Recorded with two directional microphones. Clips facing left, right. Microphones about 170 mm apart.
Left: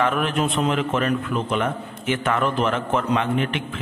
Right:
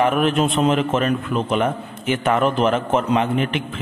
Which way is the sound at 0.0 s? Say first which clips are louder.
Right 4 dB; 20° right (ahead or behind).